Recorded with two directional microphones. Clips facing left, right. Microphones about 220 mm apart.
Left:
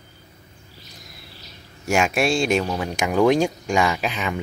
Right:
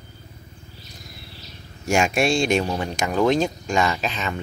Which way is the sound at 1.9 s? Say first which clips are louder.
Even; 5° left (ahead or behind).